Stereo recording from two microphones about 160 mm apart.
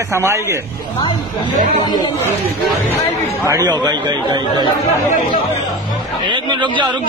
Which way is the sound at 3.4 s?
20° right (ahead or behind).